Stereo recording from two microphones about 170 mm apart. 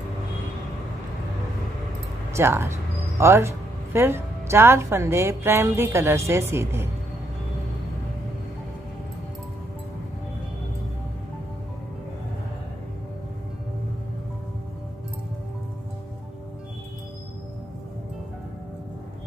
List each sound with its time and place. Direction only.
2.3 s speech: 15° right (ahead or behind)